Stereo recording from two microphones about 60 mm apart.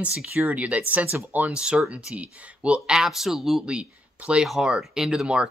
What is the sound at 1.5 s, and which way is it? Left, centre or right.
Speech, centre.